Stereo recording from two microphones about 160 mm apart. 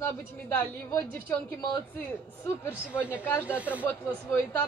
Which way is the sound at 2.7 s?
10° right (ahead or behind).